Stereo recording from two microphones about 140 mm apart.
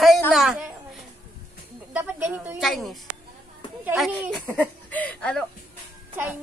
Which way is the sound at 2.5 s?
Centre (ahead or behind).